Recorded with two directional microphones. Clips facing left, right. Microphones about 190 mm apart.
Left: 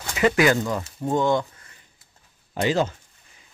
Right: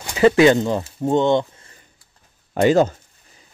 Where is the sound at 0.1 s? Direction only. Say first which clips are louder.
Right 6 dB; 30° right (ahead or behind).